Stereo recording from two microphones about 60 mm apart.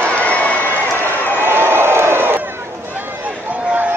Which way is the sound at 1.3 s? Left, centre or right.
Right.